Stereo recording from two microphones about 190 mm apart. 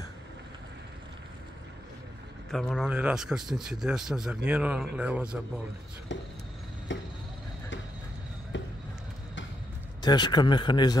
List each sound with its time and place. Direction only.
2.5 s a man's voice: centre (ahead or behind)
6.9 s chop: 75° left (ahead or behind)
8.5 s basketball bounce: 75° left (ahead or behind)
10.0 s speech: 20° left (ahead or behind)